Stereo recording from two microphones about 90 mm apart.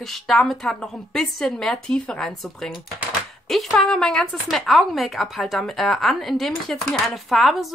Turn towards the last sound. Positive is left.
turn(degrees=0)  # may be behind; listen again after turning